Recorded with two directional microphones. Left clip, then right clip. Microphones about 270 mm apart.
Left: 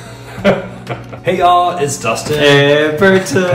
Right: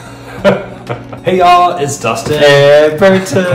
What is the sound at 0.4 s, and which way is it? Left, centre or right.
Speech, centre.